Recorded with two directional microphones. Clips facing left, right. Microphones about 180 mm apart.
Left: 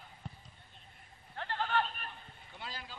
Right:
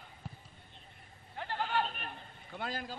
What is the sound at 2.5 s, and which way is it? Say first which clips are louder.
Speech: right 8 dB; 50° right (ahead or behind).